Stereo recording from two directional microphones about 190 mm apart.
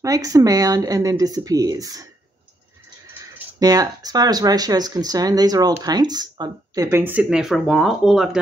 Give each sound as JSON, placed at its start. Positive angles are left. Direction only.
{"t": 0.0, "sound": "speech", "side_deg": -20}
{"t": 3.5, "sound": "speech", "side_deg": -20}